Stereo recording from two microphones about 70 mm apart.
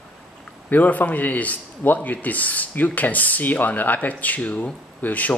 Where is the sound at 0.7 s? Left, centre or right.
Left.